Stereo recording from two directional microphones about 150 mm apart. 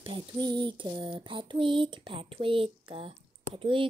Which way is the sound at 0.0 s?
30° right (ahead or behind).